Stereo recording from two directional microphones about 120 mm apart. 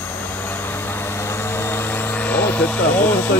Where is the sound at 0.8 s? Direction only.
20° left (ahead or behind).